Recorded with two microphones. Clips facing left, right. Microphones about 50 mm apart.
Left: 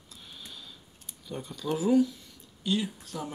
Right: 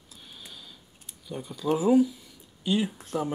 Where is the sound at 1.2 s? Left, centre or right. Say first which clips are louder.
Right 3 dB; centre.